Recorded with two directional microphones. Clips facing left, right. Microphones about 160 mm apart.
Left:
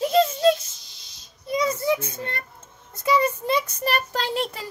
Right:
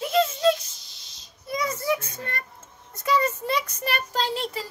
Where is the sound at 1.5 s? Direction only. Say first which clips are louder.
Left 4 dB; 20° left (ahead or behind).